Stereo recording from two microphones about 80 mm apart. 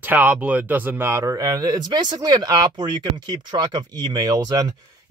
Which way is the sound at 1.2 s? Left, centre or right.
Right.